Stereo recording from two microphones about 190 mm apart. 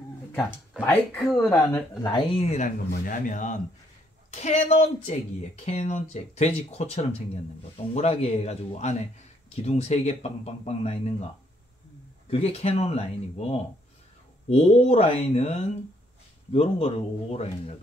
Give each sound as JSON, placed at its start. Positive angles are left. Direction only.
{"t": 0.4, "sound": "speech", "side_deg": 5}
{"t": 2.1, "sound": "speech", "side_deg": 25}
{"t": 2.5, "sound": "speech", "side_deg": 45}
{"t": 12.3, "sound": "speech", "side_deg": 30}